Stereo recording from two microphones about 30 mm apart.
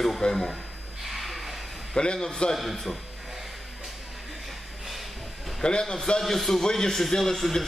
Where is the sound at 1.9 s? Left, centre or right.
Left.